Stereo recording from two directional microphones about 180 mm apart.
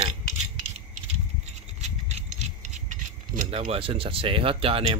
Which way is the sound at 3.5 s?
30° right (ahead or behind).